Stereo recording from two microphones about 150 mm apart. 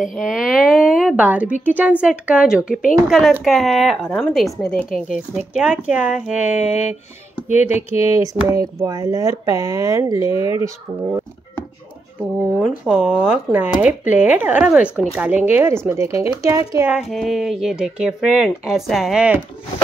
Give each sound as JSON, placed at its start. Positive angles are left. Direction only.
{"t": 0.0, "sound": "a woman's voice", "side_deg": -5}
{"t": 5.5, "sound": "speech", "side_deg": -5}
{"t": 7.4, "sound": "speech", "side_deg": 50}
{"t": 8.1, "sound": "speech", "side_deg": -20}
{"t": 12.2, "sound": "speech", "side_deg": -10}
{"t": 17.1, "sound": "speech", "side_deg": 0}